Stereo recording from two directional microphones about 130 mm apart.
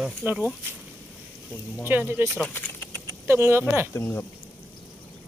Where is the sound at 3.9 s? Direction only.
15° left (ahead or behind).